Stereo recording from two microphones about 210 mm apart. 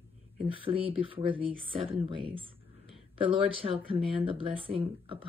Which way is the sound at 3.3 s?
25° right (ahead or behind).